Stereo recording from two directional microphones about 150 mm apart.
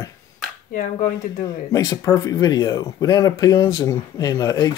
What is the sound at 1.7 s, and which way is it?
Speech, 25° left (ahead or behind).